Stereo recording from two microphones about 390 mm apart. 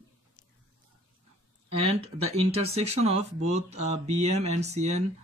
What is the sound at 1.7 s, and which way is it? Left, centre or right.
Speech, centre.